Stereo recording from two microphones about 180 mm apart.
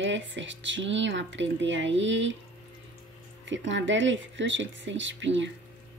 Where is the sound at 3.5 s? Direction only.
85° right.